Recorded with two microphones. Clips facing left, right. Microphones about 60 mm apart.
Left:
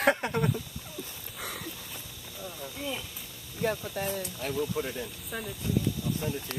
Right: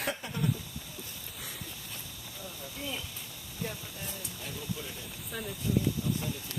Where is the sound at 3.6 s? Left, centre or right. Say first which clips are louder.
Left 10 dB; left.